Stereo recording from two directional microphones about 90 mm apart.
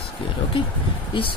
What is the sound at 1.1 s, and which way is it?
Speech, 65° left (ahead or behind).